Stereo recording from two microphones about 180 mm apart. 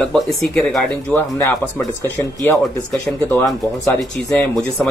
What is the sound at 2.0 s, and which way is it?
Speech, 10° left (ahead or behind).